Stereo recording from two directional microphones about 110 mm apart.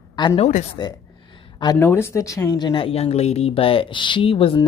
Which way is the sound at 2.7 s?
55° left (ahead or behind).